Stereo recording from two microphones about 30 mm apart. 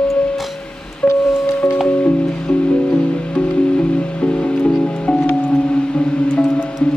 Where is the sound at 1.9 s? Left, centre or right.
Left.